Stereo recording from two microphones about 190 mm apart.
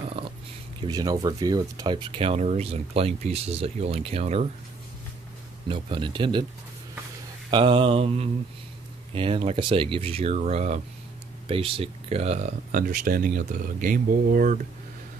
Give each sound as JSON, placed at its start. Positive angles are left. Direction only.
{"t": 0.2, "sound": "dog", "side_deg": -25}
{"t": 0.8, "sound": "speech", "side_deg": -20}
{"t": 5.7, "sound": "speech", "side_deg": -25}
{"t": 7.5, "sound": "speech", "side_deg": -25}